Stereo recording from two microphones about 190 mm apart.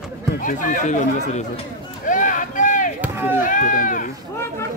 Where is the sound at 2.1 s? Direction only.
45° left (ahead or behind).